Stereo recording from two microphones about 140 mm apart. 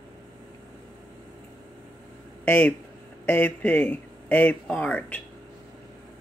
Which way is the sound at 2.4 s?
10° left (ahead or behind).